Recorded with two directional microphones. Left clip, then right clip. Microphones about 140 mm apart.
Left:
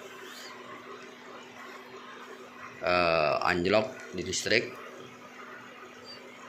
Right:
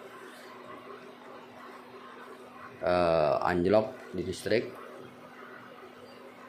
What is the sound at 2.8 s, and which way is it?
Speech, 30° right (ahead or behind).